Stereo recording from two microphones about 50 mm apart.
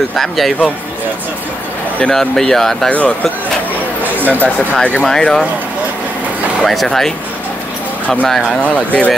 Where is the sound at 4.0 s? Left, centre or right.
Right.